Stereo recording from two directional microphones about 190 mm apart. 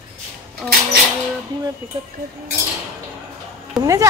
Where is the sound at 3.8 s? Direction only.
15° right (ahead or behind).